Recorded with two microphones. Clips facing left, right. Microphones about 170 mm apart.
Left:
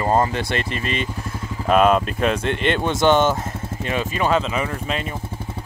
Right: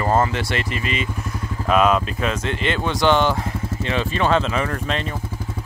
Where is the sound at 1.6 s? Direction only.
45° left (ahead or behind).